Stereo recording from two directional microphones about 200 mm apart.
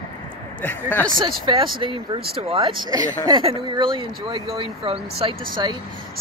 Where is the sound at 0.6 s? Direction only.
10° left (ahead or behind).